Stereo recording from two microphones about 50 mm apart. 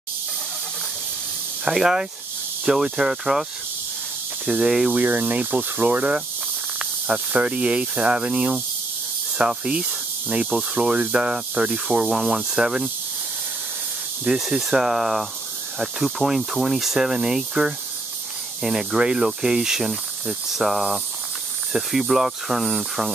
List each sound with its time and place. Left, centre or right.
1.6 s speech: centre
4.5 s speech: centre
4.9 s speech: right
5.9 s snake: right
9.7 s snake: right
11.0 s speech: centre
14.2 s speech: centre